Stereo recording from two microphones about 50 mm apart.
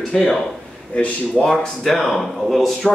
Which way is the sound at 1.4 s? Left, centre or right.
Centre.